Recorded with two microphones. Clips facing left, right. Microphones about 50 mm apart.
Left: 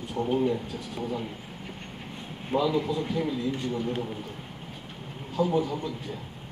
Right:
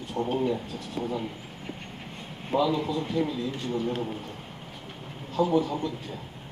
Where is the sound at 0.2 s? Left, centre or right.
Centre.